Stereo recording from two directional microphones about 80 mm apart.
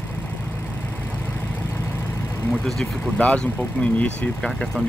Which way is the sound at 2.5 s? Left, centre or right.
Centre.